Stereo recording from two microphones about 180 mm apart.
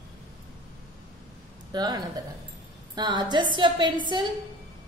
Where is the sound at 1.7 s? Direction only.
20° right (ahead or behind).